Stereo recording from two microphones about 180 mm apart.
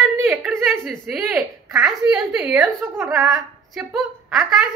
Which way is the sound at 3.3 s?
Centre (ahead or behind).